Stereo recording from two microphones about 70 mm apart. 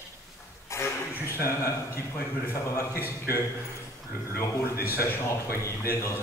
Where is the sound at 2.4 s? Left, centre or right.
Left.